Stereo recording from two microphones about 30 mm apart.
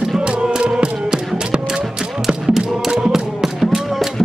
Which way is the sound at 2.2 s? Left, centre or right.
Centre.